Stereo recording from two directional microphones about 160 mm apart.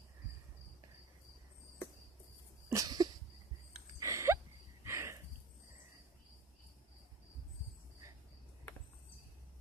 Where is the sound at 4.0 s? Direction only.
20° right (ahead or behind).